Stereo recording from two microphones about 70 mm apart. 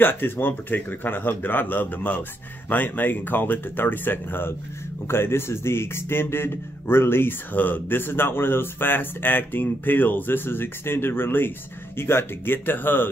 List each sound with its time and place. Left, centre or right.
0.0 s speech: left